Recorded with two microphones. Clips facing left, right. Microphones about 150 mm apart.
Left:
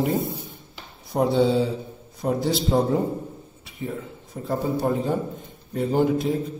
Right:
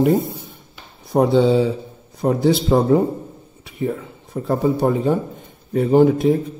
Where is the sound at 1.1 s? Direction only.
70° right (ahead or behind).